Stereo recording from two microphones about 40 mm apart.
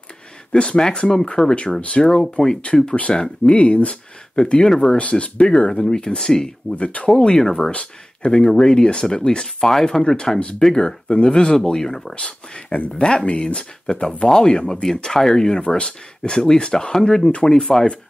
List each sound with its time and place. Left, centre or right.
0.5 s speech: left
2.3 s speech: centre; by 3.9 s left
4.4 s speech: left
6.7 s speech: left
7.1 s speech: left
7.7 s speech: left